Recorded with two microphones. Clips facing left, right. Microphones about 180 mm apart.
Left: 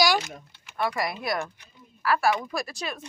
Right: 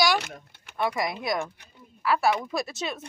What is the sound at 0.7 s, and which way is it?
A woman's voice, 20° right (ahead or behind).